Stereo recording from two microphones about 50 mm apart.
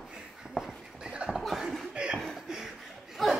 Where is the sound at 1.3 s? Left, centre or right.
Centre.